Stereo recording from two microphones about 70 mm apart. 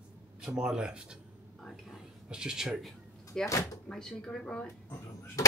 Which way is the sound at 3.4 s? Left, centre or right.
Left.